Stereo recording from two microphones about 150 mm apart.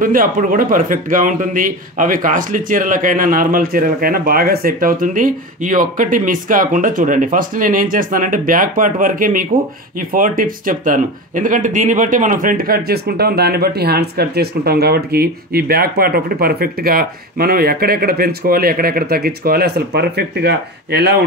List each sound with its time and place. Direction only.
0.0 s a man's voice: 65° right (ahead or behind); by 21.1 s 90° right